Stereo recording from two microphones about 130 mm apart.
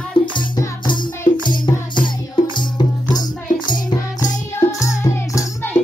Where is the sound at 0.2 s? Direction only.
35° left (ahead or behind).